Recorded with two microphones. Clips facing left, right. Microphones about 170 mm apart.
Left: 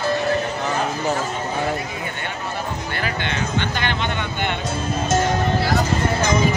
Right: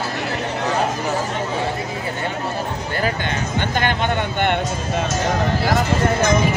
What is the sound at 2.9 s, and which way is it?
Music, 40° right (ahead or behind).